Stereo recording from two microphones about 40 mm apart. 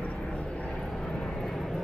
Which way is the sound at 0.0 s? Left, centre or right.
Left.